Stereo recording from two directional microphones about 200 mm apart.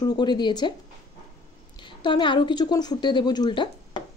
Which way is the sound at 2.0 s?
25° left (ahead or behind).